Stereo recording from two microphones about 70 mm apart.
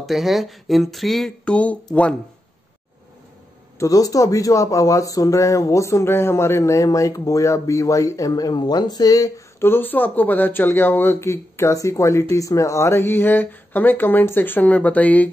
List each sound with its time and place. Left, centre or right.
0.0 s speech: centre
1.4 s speech: centre
3.8 s speech: left
9.6 s speech: left